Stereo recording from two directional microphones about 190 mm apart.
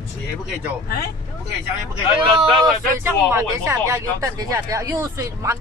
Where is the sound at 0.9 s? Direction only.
55° left (ahead or behind).